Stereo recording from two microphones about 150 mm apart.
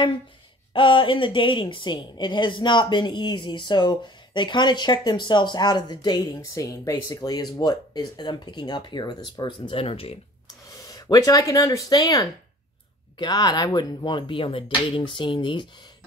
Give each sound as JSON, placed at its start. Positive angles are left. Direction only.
{"t": 0.7, "sound": "a woman's voice", "side_deg": 35}
{"t": 10.7, "sound": "a woman's voice", "side_deg": 25}